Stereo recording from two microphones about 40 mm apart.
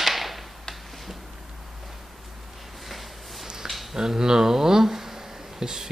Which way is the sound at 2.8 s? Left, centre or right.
Centre.